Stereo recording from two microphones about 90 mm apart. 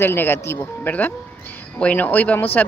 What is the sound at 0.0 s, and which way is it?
Speech, 25° left (ahead or behind).